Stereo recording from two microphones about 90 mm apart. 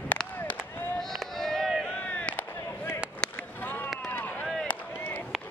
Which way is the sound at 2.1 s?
15° left (ahead or behind).